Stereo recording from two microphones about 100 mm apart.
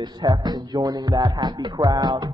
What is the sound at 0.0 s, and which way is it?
Speech, 45° right (ahead or behind).